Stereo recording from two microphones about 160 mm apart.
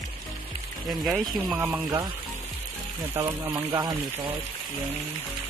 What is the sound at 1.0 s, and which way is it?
Speech, centre (ahead or behind).